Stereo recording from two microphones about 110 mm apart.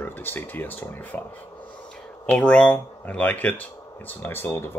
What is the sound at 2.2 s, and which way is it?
Speech, 10° left (ahead or behind).